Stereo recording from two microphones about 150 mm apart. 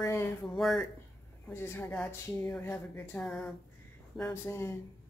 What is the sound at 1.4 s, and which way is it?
Speech, 15° left (ahead or behind).